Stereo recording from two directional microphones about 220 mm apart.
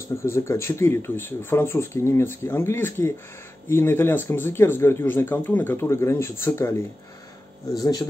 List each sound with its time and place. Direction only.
0.1 s speech: 10° left (ahead or behind)